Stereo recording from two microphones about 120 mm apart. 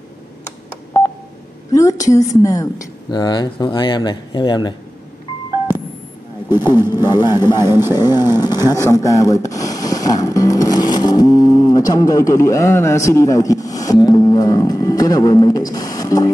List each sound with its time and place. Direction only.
1.7 s a woman's voice: 25° left (ahead or behind)
6.5 s a woman's voice: 35° left (ahead or behind)
7.2 s speech: 20° right (ahead or behind)
7.9 s a woman's voice: 35° left (ahead or behind)
8.5 s speech: 25° right (ahead or behind)
8.8 s speech: 30° left (ahead or behind)